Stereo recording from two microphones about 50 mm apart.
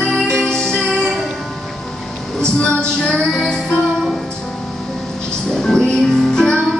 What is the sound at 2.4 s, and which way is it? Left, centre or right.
Music, centre.